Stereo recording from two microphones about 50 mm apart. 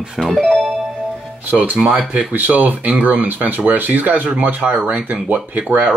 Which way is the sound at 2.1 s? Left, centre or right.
Right.